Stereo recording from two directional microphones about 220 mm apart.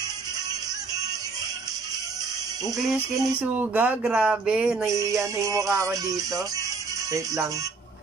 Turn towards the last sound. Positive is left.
turn(degrees=-15)  # may be behind; listen again after turning